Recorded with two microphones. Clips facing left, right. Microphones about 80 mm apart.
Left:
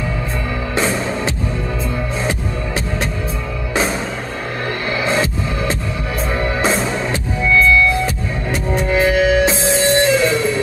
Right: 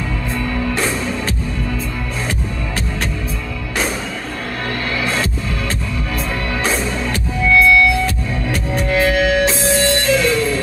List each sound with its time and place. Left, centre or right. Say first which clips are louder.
5.0 s music: left 3 dB; centre
9.8 s music: left 4 dB; left